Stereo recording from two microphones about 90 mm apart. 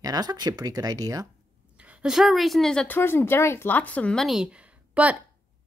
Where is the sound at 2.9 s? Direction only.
25° left (ahead or behind).